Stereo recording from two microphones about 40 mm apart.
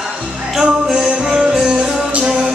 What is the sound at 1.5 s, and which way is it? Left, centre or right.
Music, centre.